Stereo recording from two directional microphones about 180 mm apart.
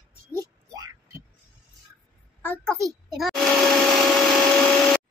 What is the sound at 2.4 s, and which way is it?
Speech, 10° left (ahead or behind).